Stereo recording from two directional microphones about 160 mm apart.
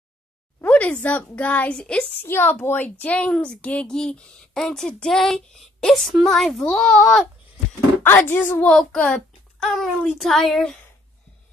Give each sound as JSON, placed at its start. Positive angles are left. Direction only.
{"t": 0.6, "sound": "a woman's voice", "side_deg": 10}
{"t": 8.0, "sound": "a woman's voice", "side_deg": 15}